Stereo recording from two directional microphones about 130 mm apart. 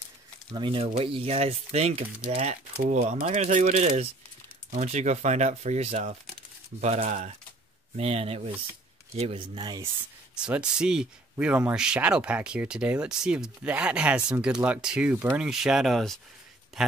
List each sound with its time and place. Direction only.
0.5 s speech: 40° right (ahead or behind)
10.4 s speech: 5° right (ahead or behind)